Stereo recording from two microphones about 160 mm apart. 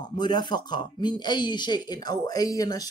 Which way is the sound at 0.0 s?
25° left (ahead or behind).